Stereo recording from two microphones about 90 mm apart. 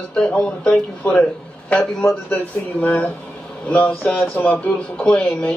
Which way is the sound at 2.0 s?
20° left (ahead or behind).